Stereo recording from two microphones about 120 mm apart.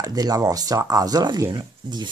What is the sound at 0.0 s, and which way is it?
Speech, 30° right (ahead or behind).